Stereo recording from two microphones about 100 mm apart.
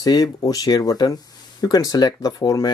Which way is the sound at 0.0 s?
40° left (ahead or behind).